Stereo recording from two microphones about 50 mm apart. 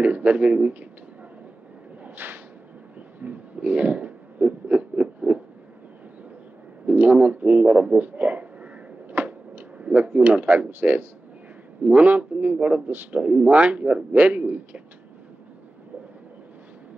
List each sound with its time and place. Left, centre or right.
0.0 s speech: right
2.0 s whip: right
3.2 s a sound: right
6.9 s speech: right
9.1 s a sound: right
9.8 s speech: right